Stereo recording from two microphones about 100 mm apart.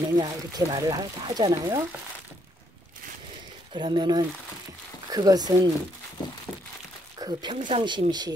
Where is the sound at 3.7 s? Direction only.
50° right (ahead or behind).